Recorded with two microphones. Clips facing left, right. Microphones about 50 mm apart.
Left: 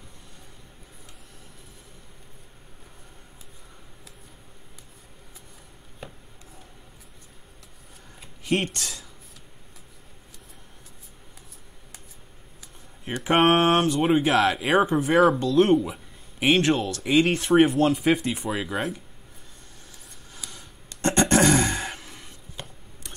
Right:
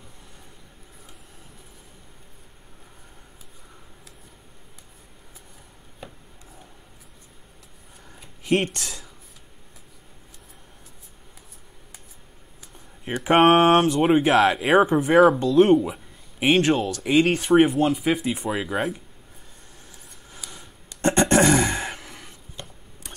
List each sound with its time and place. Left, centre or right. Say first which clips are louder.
8.5 s speech: right 3 dB; centre
13.0 s speech: right 3 dB; centre
14.2 s speech: right 3 dB; right
14.5 s speech: right 3 dB; centre
20.5 s a sound: right 1 dB; right
21.8 s a sound: right 2 dB; right